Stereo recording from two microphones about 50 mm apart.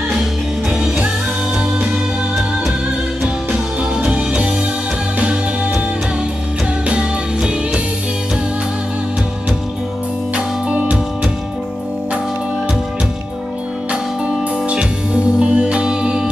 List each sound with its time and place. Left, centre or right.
4.0 s music: centre
6.9 s music: right
10.3 s music: right
14.2 s music: right